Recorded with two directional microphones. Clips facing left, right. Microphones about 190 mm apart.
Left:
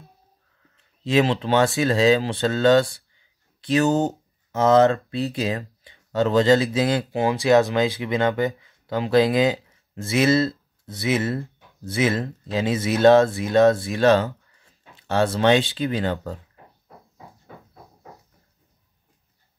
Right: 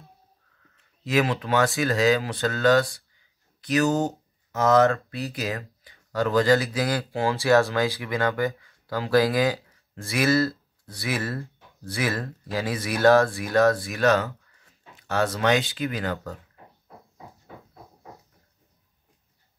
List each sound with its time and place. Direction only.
1.0 s speech: 25° left (ahead or behind)
3.2 s a sound: 25° left (ahead or behind)
4.5 s speech: 25° left (ahead or behind)